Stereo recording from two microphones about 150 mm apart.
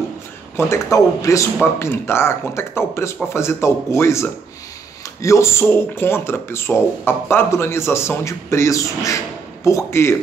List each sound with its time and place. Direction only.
0.6 s speech: 20° left (ahead or behind)